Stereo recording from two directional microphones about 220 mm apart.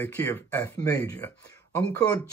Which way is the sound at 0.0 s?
10° left (ahead or behind).